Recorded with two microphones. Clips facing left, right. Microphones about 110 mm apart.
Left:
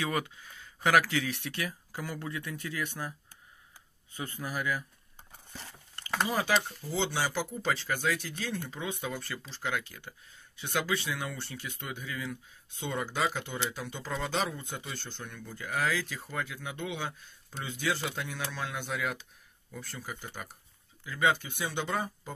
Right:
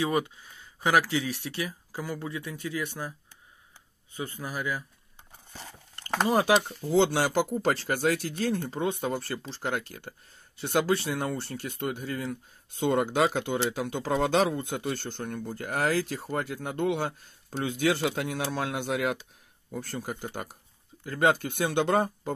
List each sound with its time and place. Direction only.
0.0 s speech: 25° right (ahead or behind)
1.9 s speech: 15° right (ahead or behind)
4.2 s speech: 25° right (ahead or behind)
6.2 s speech: 55° right (ahead or behind)
7.6 s speech: 45° right (ahead or behind); by 22.3 s 60° right (ahead or behind)